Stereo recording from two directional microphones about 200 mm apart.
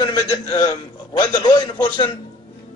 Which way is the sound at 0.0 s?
20° left (ahead or behind).